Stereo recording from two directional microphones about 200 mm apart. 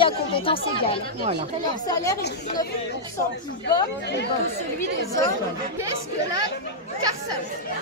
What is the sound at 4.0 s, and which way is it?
Speech, 60° left (ahead or behind).